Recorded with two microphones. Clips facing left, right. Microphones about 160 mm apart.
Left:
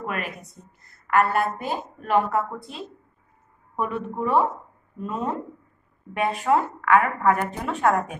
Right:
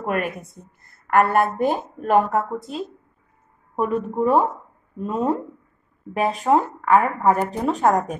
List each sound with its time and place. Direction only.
0.0 s a woman's voice: 50° right (ahead or behind)
6.5 s a woman's voice: 25° right (ahead or behind)